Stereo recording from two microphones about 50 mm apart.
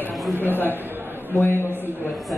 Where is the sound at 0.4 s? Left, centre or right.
Left.